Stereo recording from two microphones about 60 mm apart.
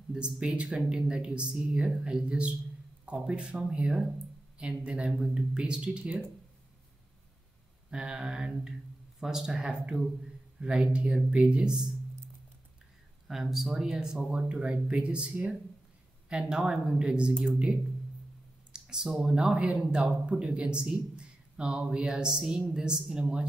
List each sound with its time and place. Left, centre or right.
0.1 s speech: centre
7.9 s speech: centre
13.3 s speech: centre
14.3 s speech: centre
18.7 s speech: centre